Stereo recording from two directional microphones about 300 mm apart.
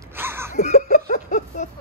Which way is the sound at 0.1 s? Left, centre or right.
Centre.